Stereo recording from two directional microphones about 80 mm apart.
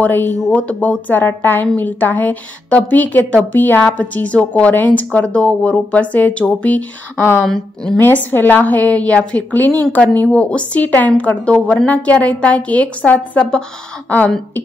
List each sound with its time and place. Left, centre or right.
0.0 s a woman's voice: left
7.4 s a woman's voice: centre
8.0 s a woman's voice: left